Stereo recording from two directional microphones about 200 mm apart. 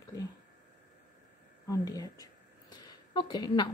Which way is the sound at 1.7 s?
15° left (ahead or behind).